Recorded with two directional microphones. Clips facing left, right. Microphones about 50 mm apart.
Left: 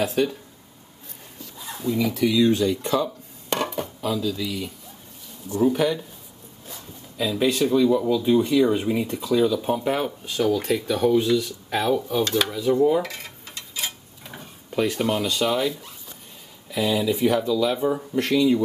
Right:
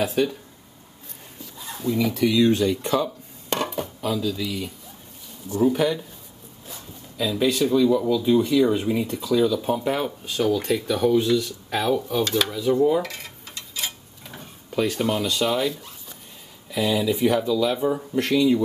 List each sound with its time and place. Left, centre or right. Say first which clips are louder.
0.0 s speech: even; centre
2.0 s speech: right 1 dB; right
2.8 s speech: even; centre
3.5 s dishes: even; centre
4.0 s speech: even; centre
7.2 s speech: even; left
9.8 s speech: even; centre
12.8 s dishes: even; centre
15.4 s speech: even; centre
16.7 s speech: even; centre